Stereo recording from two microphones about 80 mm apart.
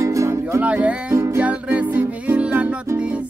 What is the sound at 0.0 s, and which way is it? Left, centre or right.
Music, right.